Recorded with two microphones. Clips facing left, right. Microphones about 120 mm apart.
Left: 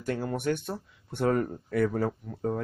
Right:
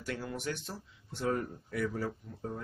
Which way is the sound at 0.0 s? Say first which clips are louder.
Left 8 dB; 45° left (ahead or behind).